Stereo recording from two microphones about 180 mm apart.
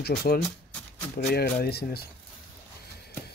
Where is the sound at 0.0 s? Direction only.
60° left (ahead or behind).